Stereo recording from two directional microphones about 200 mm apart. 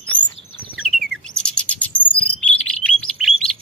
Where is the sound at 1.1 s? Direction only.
5° left (ahead or behind).